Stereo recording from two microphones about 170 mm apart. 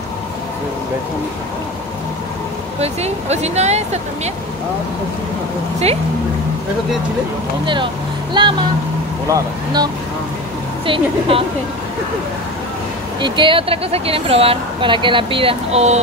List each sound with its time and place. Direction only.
2.8 s speech: 40° right (ahead or behind)
7.6 s speech: 30° right (ahead or behind)
10.9 s speech: 35° right (ahead or behind)
13.2 s speech: 30° right (ahead or behind)